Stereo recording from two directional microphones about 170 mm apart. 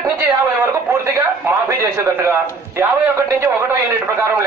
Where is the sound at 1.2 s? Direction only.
15° right (ahead or behind).